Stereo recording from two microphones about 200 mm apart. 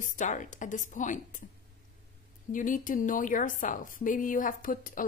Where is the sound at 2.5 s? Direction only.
40° left (ahead or behind).